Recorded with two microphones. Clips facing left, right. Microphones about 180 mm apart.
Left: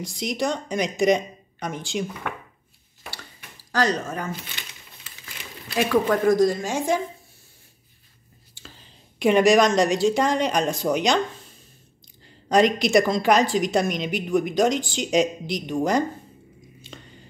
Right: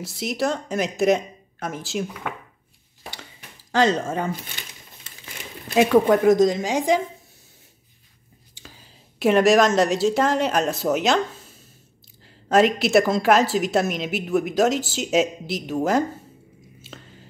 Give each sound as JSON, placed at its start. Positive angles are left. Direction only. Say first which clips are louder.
{"t": 0.0, "sound": "a woman's voice", "louder": "right 1 dB", "side_deg": -5}
{"t": 3.7, "sound": "speech", "louder": "right 4 dB", "side_deg": -25}
{"t": 5.8, "sound": "speech", "louder": "right 5 dB", "side_deg": -20}
{"t": 8.6, "sound": "a woman's voice", "louder": "even", "side_deg": -10}
{"t": 16.8, "sound": "a sound", "louder": "right 1 dB", "side_deg": -5}